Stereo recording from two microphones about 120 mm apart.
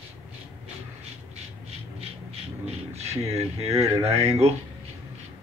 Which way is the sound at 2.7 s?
60° right (ahead or behind).